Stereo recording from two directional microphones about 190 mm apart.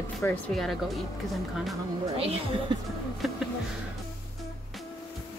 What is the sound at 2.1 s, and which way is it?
Speech, 30° right (ahead or behind).